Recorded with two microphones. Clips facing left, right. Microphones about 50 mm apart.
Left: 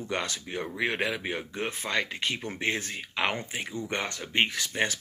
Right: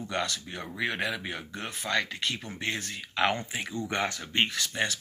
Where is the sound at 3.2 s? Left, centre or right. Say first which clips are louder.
Right 2 dB; centre.